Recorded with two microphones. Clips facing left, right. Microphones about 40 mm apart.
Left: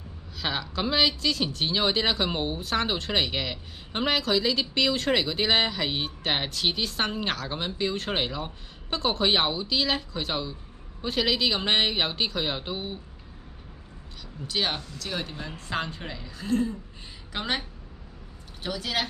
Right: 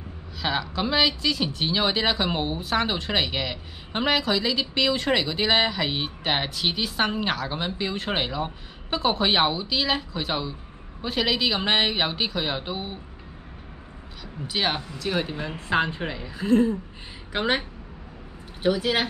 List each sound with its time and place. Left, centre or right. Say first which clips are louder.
0.4 s speech: right 3 dB; centre
14.5 s speech: right 3 dB; centre